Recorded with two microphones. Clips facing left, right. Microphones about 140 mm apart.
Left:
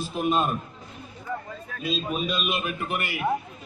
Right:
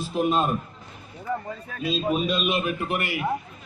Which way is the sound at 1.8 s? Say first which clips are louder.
Right 4 dB; 35° right (ahead or behind).